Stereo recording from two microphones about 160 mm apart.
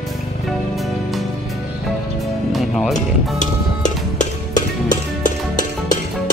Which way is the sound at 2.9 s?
50° left (ahead or behind).